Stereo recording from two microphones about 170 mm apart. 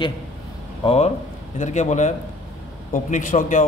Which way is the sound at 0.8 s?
40° left (ahead or behind).